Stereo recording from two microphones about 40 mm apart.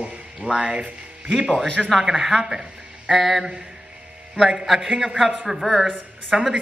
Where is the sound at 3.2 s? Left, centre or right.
Centre.